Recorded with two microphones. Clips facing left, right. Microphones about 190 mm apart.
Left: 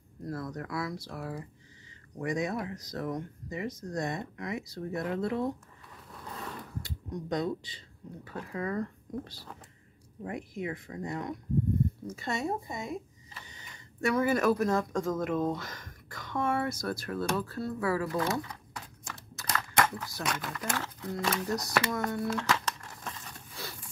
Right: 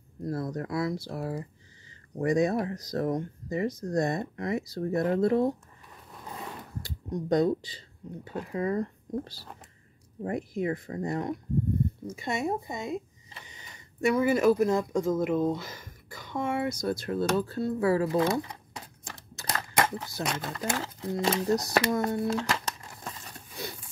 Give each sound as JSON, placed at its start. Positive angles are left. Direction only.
{"t": 0.2, "sound": "speech", "side_deg": -30}
{"t": 7.2, "sound": "speech", "side_deg": -35}
{"t": 8.2, "sound": "speech", "side_deg": -25}
{"t": 12.2, "sound": "speech", "side_deg": -15}
{"t": 23.5, "sound": "horse", "side_deg": -20}